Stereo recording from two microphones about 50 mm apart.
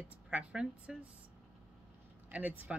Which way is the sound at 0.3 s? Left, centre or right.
Centre.